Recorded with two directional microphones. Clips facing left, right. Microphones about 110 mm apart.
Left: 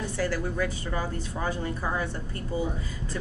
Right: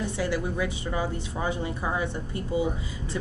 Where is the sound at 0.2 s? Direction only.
15° right (ahead or behind).